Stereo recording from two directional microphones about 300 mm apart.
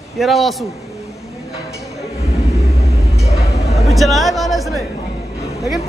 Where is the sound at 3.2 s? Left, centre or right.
Centre.